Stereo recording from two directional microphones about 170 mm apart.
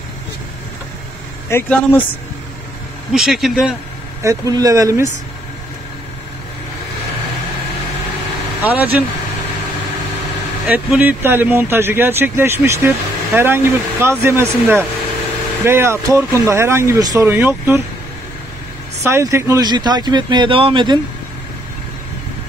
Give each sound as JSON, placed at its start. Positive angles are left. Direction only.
{"t": 1.5, "sound": "speech", "side_deg": 15}
{"t": 3.1, "sound": "speech", "side_deg": 0}
{"t": 4.2, "sound": "speech", "side_deg": -20}
{"t": 8.6, "sound": "speech", "side_deg": -10}
{"t": 10.7, "sound": "speech", "side_deg": -10}
{"t": 19.0, "sound": "speech", "side_deg": -15}